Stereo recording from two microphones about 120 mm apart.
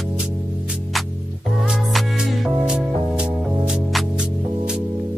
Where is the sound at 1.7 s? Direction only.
Centre (ahead or behind).